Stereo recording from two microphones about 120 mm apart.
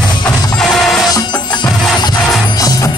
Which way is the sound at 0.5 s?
5° left (ahead or behind).